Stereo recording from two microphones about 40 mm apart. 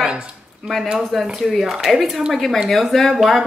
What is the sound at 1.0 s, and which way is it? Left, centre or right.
Speech, centre.